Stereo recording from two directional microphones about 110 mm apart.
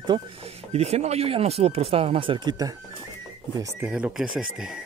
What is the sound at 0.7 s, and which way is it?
Speech, 75° right (ahead or behind).